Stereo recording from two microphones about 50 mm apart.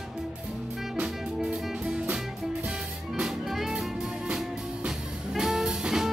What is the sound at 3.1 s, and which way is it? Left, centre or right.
Music, centre.